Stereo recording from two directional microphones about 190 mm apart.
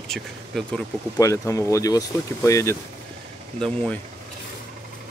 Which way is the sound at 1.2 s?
15° left (ahead or behind).